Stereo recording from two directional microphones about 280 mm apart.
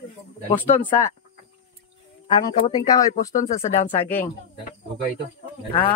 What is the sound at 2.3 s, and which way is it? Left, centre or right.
Speech, centre.